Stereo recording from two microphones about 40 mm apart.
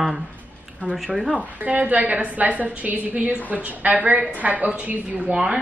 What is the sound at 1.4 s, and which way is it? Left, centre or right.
A woman's voice, right.